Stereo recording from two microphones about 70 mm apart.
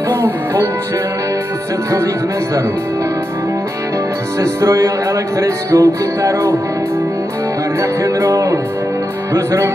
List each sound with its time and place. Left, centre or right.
4.4 s music: right
7.8 s music: right